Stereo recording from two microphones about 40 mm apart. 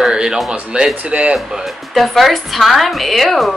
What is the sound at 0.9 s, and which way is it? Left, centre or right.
Speech, right.